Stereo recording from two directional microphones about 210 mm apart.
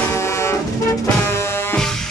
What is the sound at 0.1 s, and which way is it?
Music, 15° left (ahead or behind).